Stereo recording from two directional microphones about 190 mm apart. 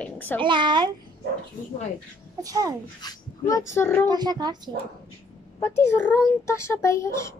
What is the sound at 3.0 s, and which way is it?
A child's voice, 15° left (ahead or behind).